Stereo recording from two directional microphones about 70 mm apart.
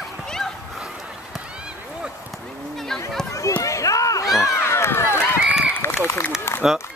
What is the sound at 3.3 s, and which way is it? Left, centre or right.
Run, left.